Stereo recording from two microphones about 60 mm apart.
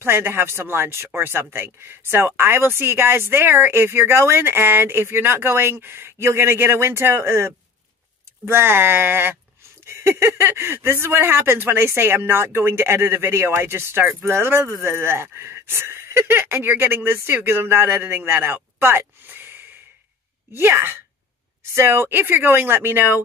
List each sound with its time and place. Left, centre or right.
0.0 s speech: right